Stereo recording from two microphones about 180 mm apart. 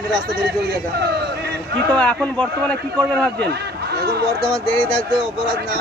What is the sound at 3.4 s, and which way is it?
Speech, 65° right (ahead or behind).